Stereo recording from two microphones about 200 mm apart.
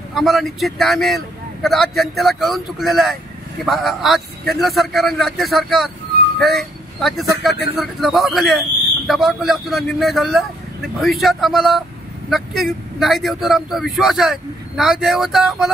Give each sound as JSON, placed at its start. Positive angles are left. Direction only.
{"t": 0.1, "sound": "speech", "side_deg": 0}